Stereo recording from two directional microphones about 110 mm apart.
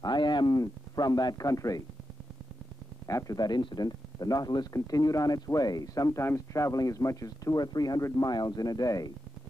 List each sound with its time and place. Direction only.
0.0 s speech: 40° left (ahead or behind)
3.1 s speech: 30° left (ahead or behind)